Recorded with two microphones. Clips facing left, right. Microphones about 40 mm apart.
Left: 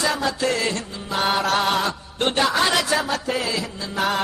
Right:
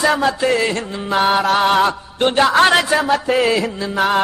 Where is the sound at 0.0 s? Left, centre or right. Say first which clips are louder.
Right 7 dB; right.